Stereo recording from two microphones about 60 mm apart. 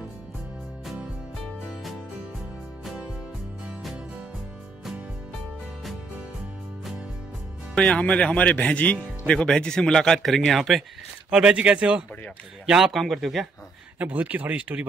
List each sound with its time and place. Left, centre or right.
7.7 s speech: centre
11.2 s speech: centre
12.9 s speech: centre
13.9 s speech: right